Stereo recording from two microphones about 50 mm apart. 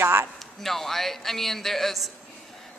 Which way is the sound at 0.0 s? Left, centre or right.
Right.